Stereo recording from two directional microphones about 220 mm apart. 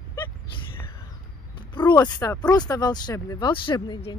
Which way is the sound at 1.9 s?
15° left (ahead or behind).